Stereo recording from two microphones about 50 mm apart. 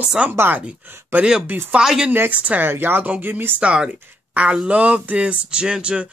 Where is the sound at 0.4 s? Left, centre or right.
Right.